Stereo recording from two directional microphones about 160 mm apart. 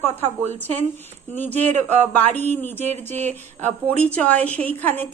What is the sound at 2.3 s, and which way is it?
Speech, 45° right (ahead or behind).